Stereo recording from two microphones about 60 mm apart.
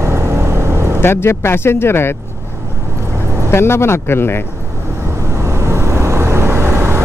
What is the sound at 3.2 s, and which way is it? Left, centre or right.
Vehicle, right.